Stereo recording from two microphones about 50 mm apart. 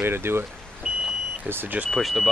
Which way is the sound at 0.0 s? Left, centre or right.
Right.